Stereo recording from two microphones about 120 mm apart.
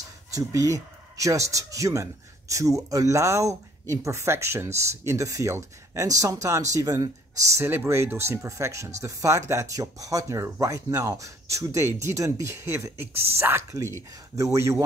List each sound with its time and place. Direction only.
0.3 s speech: 25° right (ahead or behind)